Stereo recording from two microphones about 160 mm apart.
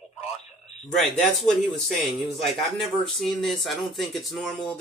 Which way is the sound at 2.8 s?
Centre (ahead or behind).